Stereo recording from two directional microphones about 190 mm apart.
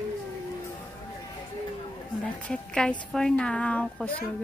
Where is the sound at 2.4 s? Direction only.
5° left (ahead or behind).